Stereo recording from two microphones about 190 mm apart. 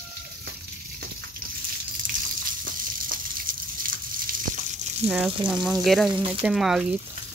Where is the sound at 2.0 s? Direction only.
45° right (ahead or behind).